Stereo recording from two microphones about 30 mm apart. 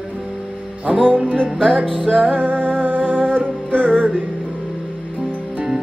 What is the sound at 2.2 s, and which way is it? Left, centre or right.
Music, right.